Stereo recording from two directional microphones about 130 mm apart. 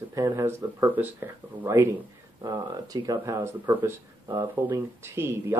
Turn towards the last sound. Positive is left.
turn(degrees=-20)  # may be behind; listen again after turning